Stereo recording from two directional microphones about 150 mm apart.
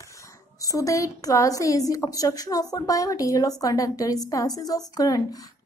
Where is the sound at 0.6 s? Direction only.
20° left (ahead or behind).